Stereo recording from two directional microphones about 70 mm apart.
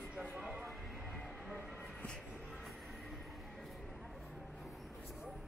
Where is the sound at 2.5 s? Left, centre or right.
Centre.